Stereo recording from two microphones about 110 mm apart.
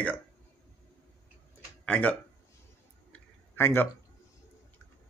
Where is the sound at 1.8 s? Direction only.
10° left (ahead or behind).